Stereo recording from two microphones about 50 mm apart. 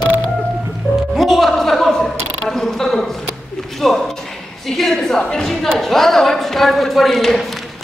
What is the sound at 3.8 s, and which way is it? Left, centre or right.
A woman's voice, centre.